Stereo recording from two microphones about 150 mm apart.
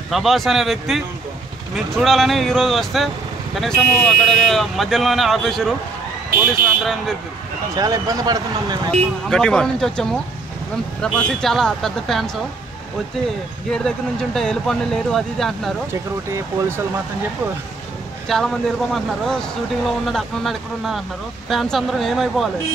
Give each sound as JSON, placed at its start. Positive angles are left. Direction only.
{"t": 0.1, "sound": "speech", "side_deg": 0}
{"t": 6.3, "sound": "speech", "side_deg": -75}
{"t": 7.7, "sound": "speech", "side_deg": -25}
{"t": 9.3, "sound": "speech", "side_deg": 5}
{"t": 13.7, "sound": "speech", "side_deg": 5}
{"t": 15.9, "sound": "speech", "side_deg": -20}
{"t": 18.3, "sound": "speech", "side_deg": 0}